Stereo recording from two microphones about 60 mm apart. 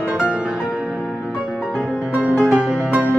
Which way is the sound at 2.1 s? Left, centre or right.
Right.